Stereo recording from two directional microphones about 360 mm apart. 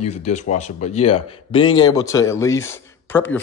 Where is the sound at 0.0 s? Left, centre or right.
Centre.